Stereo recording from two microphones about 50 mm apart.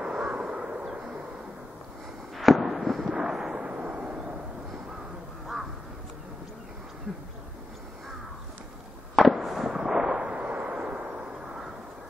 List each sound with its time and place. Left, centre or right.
0.0 s a sound: right
0.9 s bird: centre
2.3 s fireworks: centre
3.6 s artillery fire: right
9.1 s fireworks: centre; by 11.6 s right